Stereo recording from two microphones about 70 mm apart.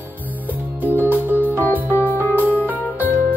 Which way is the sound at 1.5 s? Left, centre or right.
Left.